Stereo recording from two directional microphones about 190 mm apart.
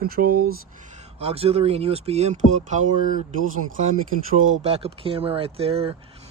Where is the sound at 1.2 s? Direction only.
30° right (ahead or behind).